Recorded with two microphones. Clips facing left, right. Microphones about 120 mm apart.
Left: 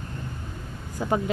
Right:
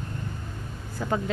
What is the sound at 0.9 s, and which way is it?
Speech, 15° left (ahead or behind).